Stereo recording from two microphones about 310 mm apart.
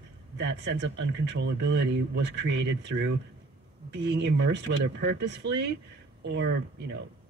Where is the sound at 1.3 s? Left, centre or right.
Right.